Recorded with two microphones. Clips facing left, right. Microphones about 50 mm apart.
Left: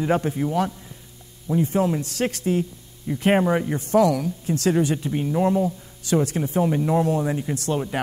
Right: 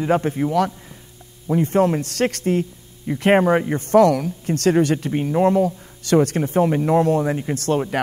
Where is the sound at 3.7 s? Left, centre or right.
Right.